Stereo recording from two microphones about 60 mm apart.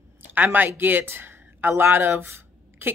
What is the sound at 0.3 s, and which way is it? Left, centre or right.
Speech, right.